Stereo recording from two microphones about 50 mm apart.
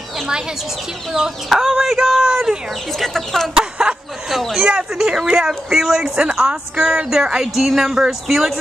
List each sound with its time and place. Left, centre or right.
1.1 s speech: centre
3.0 s speech: centre
3.5 s a sound: centre
4.3 s speech: centre
4.7 s speech: centre